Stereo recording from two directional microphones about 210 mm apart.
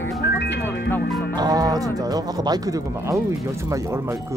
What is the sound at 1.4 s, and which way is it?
Speech, 15° right (ahead or behind).